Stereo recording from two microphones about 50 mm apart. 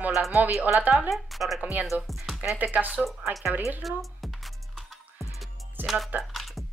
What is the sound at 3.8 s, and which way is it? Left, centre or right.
Speech, centre.